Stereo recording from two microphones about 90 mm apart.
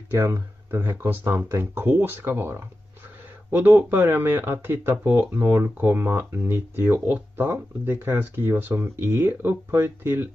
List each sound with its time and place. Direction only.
0.1 s speech: 30° right (ahead or behind)